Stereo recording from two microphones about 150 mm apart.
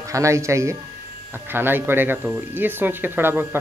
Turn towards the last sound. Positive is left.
turn(degrees=-15)  # may be behind; listen again after turning